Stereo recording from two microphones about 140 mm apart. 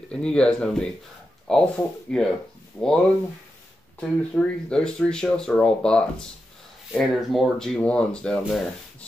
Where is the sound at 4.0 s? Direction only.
5° left (ahead or behind).